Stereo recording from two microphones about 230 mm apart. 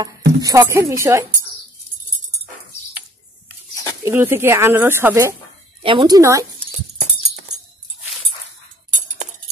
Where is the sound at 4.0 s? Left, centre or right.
Centre.